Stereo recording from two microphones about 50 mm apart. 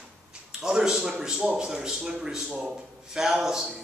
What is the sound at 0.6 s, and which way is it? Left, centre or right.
Speech, centre.